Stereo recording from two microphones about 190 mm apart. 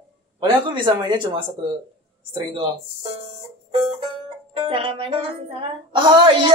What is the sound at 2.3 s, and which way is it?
Speech, 25° right (ahead or behind).